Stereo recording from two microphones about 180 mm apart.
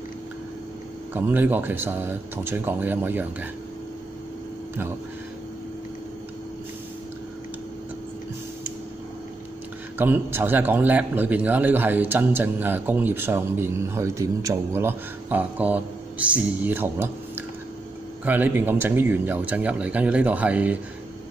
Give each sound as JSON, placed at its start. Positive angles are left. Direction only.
{"t": 1.1, "sound": "a man's voice", "side_deg": -10}
{"t": 9.9, "sound": "a man's voice", "side_deg": -10}